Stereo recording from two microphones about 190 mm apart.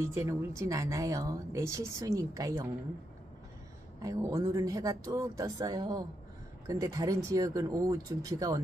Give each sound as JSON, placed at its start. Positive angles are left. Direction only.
{"t": 0.0, "sound": "a woman's voice", "side_deg": -15}
{"t": 4.0, "sound": "a woman's voice", "side_deg": -20}